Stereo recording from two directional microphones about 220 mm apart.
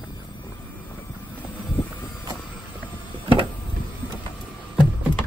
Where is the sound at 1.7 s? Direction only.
10° left (ahead or behind).